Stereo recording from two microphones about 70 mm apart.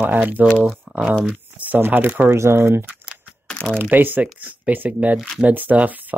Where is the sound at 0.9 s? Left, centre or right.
Right.